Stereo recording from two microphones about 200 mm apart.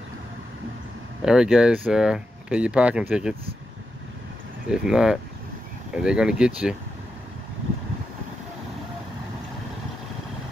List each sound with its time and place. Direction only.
1.2 s speech: 5° right (ahead or behind)
4.6 s speech: 5° right (ahead or behind)